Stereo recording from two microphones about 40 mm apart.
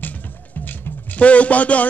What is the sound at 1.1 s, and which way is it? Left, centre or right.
Speech, left.